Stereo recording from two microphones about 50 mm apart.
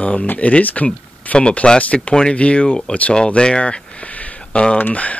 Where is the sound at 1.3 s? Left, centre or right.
Centre.